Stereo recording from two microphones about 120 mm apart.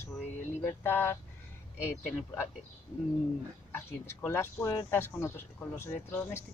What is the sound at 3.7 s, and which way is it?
Speech, 20° left (ahead or behind).